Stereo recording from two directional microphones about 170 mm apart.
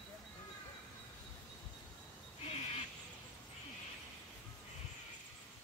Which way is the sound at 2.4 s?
35° left (ahead or behind).